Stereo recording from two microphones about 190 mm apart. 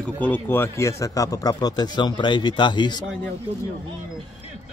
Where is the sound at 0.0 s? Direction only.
10° left (ahead or behind).